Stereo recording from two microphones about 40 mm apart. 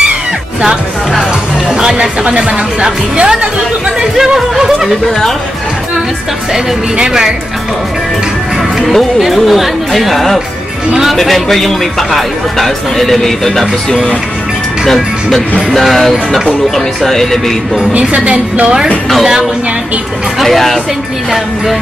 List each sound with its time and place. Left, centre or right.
1.7 s speech: centre
7.0 s speech: centre
8.8 s speech: centre
10.9 s speech: centre
11.1 s speech: centre
15.7 s speech: centre
18.1 s speech: right
20.3 s speech: centre